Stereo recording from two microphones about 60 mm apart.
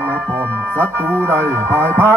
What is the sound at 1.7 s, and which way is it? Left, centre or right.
Music, right.